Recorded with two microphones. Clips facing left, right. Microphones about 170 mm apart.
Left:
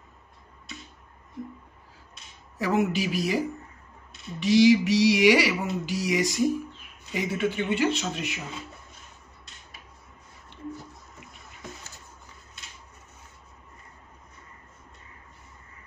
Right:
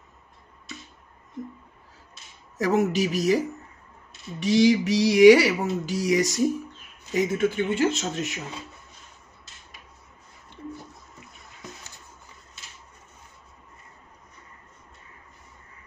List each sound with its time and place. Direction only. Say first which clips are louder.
2.5 s speech: right 2 dB; 40° right (ahead or behind)
4.4 s speech: left 1 dB; 45° right (ahead or behind)